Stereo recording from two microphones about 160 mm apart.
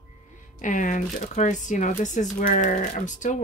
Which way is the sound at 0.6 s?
55° left (ahead or behind).